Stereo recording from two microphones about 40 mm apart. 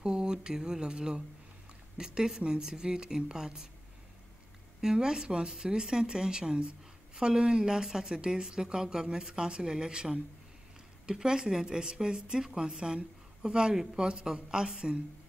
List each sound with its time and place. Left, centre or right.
0.0 s speech: centre
4.8 s a woman's voice: centre